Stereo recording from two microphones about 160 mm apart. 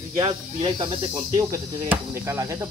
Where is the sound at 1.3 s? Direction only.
20° right (ahead or behind).